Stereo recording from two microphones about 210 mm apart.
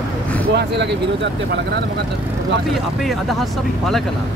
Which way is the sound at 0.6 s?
55° right (ahead or behind).